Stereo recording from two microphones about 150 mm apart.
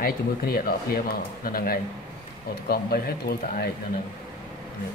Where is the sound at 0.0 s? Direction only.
80° left.